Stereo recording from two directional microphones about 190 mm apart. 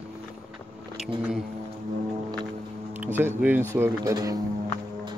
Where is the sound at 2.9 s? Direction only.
10° right (ahead or behind).